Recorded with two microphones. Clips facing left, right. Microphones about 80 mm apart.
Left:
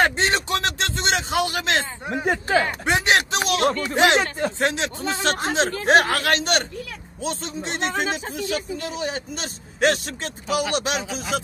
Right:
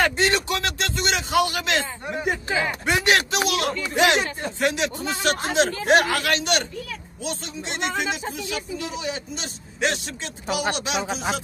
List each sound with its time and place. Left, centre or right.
0.0 s a man's voice: left
3.1 s a sound: left
3.8 s speech: left
7.8 s speech: left
11.0 s speech: right